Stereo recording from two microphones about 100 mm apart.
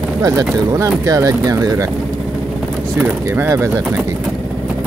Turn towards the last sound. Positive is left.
turn(degrees=-15)  # may be behind; listen again after turning